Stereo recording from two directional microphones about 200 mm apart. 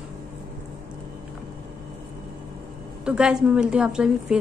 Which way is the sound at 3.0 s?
5° right (ahead or behind).